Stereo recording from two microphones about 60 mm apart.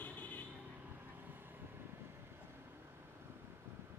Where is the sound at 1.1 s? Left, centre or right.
Right.